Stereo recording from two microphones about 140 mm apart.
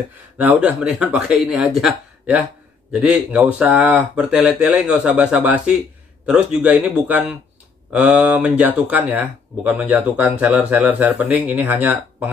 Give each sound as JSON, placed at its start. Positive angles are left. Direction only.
{"t": 0.4, "sound": "speech", "side_deg": -10}